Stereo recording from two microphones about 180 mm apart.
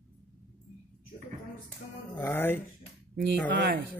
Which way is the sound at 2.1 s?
10° left (ahead or behind).